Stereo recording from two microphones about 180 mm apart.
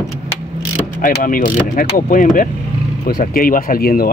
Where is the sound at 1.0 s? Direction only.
50° left (ahead or behind).